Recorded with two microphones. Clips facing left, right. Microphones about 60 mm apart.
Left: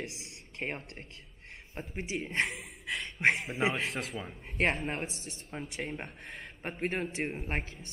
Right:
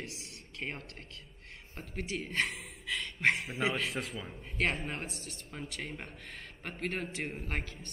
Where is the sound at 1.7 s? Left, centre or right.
Centre.